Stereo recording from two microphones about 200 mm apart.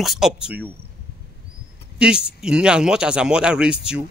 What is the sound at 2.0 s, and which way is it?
Speech, 5° right (ahead or behind).